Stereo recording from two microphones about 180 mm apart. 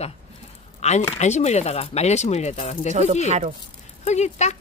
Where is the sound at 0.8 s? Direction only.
40° left (ahead or behind).